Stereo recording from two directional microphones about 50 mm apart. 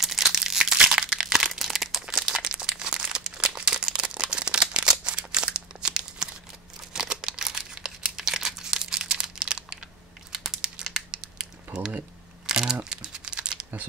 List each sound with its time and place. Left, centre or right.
0.0 s crumpling: centre
4.1 s a sound: centre
6.9 s crumpling: centre
11.1 s a sound: centre
12.4 s crumpling: centre
12.9 s typing: centre